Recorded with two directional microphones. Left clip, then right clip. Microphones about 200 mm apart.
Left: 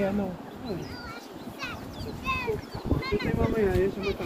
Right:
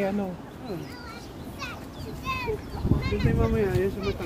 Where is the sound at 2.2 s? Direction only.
45° right (ahead or behind).